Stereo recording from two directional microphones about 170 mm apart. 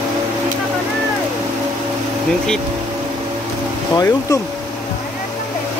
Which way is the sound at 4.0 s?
20° left (ahead or behind).